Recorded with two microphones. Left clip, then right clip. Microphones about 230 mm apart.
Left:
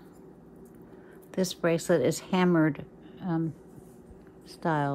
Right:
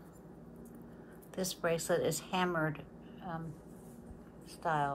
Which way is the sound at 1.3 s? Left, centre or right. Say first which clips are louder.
Left 7 dB; left.